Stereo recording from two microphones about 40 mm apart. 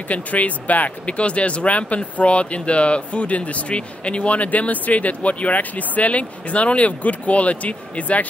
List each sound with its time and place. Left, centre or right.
0.1 s speech: left